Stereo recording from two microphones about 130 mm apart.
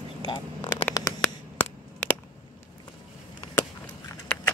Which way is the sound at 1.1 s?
25° left (ahead or behind).